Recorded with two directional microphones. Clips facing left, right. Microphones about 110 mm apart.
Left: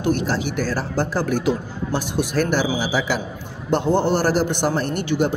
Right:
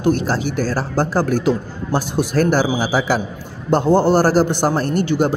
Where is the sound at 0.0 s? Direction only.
35° right (ahead or behind).